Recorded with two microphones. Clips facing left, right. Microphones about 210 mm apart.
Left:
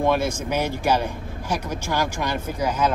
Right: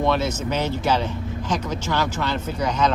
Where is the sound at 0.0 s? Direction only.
10° left (ahead or behind).